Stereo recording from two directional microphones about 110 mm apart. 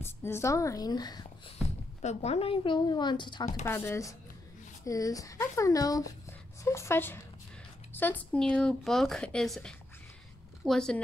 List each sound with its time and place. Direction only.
0.0 s a woman's voice: 20° left (ahead or behind); by 1.2 s 40° left (ahead or behind)
2.0 s speech: 80° left; by 3.4 s 45° left (ahead or behind)
3.6 s a woman's voice: 20° left (ahead or behind)
7.9 s a sound: 15° left (ahead or behind)
8.4 s a woman's voice: 5° left (ahead or behind)